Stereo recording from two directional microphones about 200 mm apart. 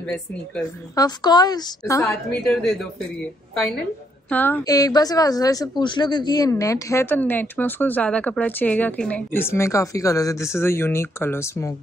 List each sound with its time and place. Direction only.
0.0 s a woman's voice: 5° left (ahead or behind)
0.9 s a woman's voice: 20° left (ahead or behind)
2.0 s a woman's voice: centre (ahead or behind)
4.3 s a woman's voice: 10° left (ahead or behind)